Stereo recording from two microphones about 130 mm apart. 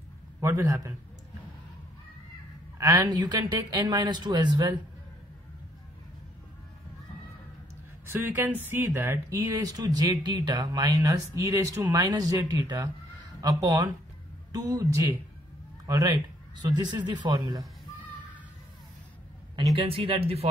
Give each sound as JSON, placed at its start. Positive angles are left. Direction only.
{"t": 0.4, "sound": "speech", "side_deg": -20}
{"t": 2.8, "sound": "speech", "side_deg": -30}
{"t": 8.1, "sound": "speech", "side_deg": -15}
{"t": 19.8, "sound": "speech", "side_deg": -45}